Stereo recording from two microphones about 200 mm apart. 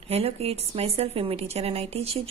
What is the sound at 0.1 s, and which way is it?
A woman's voice, 30° right (ahead or behind).